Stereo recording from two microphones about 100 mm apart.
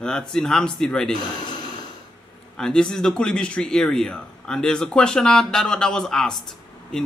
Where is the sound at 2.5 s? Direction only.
5° left (ahead or behind).